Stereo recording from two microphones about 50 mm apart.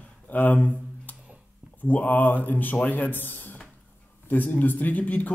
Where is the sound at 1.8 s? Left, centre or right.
Left.